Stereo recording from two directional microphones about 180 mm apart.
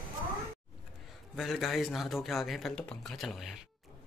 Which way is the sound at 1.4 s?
Centre (ahead or behind).